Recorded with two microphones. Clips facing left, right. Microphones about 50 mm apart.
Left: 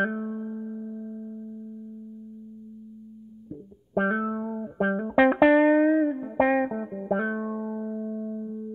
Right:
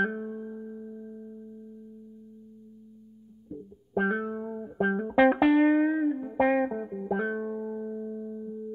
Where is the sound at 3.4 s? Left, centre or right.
Centre.